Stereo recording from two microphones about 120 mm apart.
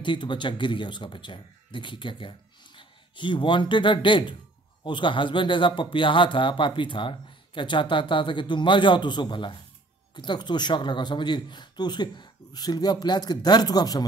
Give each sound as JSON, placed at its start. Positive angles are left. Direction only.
{"t": 0.0, "sound": "speech", "side_deg": 40}